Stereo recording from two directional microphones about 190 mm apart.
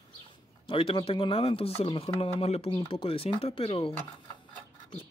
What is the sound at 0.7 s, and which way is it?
Speech, 30° left (ahead or behind).